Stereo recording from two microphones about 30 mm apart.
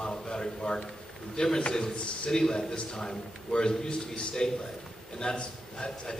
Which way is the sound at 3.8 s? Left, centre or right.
Left.